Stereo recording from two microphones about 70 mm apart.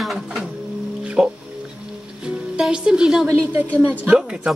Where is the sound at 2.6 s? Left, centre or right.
Centre.